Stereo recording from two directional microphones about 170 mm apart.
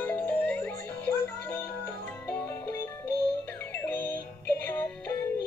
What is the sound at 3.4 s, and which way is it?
Synthetic singing, 10° left (ahead or behind).